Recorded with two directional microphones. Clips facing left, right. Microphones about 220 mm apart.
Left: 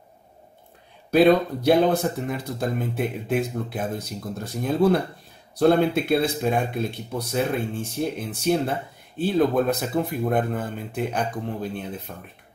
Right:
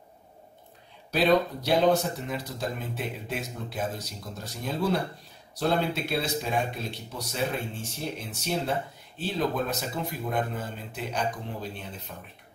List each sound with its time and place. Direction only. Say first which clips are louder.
1.1 s a man's voice: left 6 dB; 55° left (ahead or behind)